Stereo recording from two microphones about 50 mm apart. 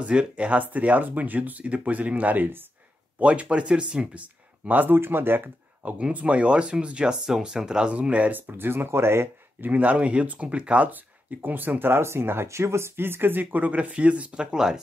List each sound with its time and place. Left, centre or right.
0.0 s speech: right
3.2 s speech: right
4.6 s speech: right
4.9 s speech: right
6.1 s speech: right
8.4 s speech: right
9.6 s speech: right
10.9 s speech: right
12.0 s speech: right
12.4 s speech: right; by 14.8 s centre